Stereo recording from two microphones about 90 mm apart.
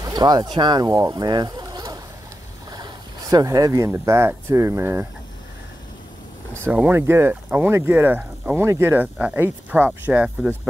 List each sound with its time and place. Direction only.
0.0 s speech: 50° right (ahead or behind)
2.7 s vehicle: 50° right (ahead or behind)
3.4 s speech: 40° right (ahead or behind)
6.9 s speech: 25° right (ahead or behind)